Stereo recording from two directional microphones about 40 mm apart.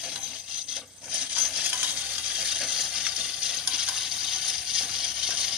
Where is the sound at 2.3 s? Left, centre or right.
Centre.